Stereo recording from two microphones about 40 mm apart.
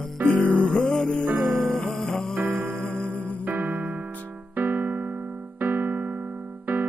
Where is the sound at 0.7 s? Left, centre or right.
Centre.